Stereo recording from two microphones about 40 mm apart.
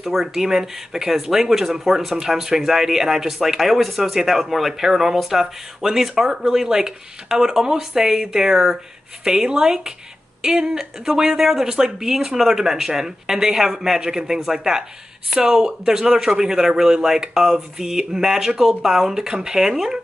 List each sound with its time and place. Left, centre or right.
0.0 s speech: centre